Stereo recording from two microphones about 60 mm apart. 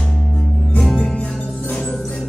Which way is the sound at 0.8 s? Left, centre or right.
Centre.